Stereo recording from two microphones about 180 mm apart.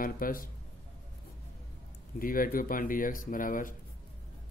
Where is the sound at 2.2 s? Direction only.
50° left (ahead or behind).